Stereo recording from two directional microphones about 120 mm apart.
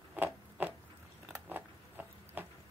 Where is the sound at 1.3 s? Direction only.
15° right (ahead or behind).